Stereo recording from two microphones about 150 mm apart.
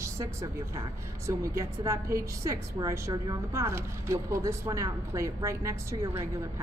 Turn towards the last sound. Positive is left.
turn(degrees=-20)  # may be behind; listen again after turning